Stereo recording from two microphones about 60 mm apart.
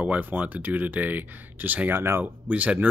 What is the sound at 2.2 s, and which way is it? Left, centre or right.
Speech, right.